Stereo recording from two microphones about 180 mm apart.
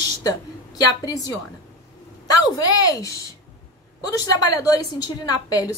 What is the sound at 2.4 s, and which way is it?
Speech, 20° left (ahead or behind).